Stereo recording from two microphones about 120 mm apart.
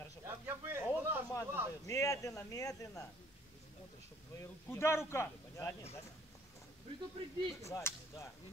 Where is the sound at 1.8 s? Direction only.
25° left (ahead or behind).